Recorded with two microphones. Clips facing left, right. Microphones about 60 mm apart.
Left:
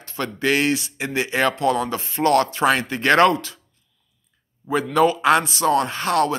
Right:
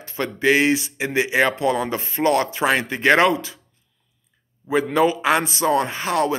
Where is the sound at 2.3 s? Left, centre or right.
Centre.